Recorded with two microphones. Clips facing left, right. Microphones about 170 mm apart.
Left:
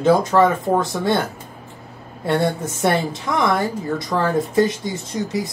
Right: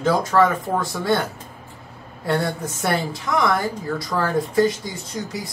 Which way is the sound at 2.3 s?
20° left (ahead or behind).